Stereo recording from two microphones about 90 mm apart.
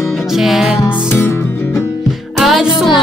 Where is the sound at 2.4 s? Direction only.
5° right (ahead or behind).